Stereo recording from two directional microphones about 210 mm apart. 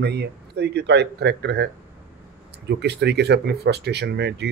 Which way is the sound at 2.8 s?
50° right (ahead or behind).